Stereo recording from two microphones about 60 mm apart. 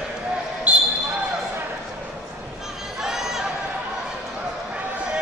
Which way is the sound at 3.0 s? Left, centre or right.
Centre.